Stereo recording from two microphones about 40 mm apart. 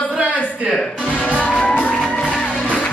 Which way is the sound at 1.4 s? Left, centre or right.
Left.